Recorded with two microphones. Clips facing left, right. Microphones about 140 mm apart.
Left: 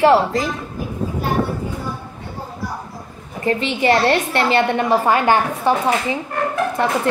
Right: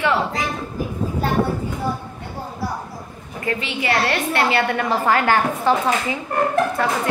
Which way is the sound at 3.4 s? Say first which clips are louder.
Left 6 dB; 35° left (ahead or behind).